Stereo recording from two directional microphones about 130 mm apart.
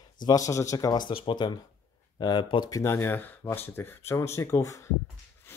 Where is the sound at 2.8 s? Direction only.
20° left (ahead or behind).